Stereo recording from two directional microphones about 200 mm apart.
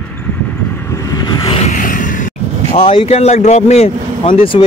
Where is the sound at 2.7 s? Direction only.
30° left (ahead or behind).